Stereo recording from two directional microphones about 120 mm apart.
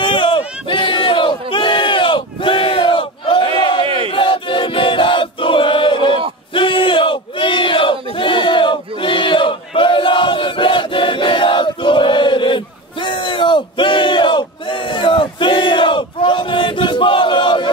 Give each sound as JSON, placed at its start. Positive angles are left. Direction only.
{"t": 0.0, "sound": "battle cry", "side_deg": 40}
{"t": 3.8, "sound": "battle cry", "side_deg": -45}
{"t": 4.1, "sound": "choir", "side_deg": 45}
{"t": 6.5, "sound": "battle cry", "side_deg": 45}